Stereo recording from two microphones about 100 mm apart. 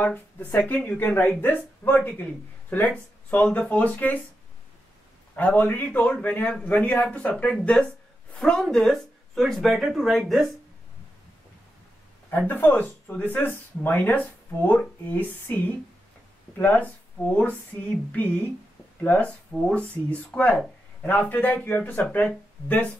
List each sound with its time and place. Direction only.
0.0 s speech: 15° left (ahead or behind)
3.3 s speech: 15° left (ahead or behind)
5.3 s speech: 15° left (ahead or behind); by 10.5 s centre (ahead or behind)
12.3 s speech: 20° left (ahead or behind)